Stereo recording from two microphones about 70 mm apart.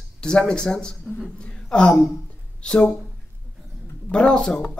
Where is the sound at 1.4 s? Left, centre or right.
Centre.